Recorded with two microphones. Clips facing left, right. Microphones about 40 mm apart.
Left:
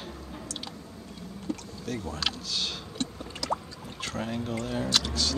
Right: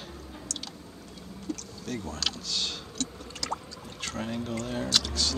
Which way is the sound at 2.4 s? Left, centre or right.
Centre.